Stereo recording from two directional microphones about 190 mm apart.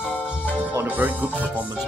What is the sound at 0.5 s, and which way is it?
Speech, 10° right (ahead or behind).